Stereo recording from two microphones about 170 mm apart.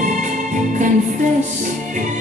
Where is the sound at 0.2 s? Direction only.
50° right (ahead or behind).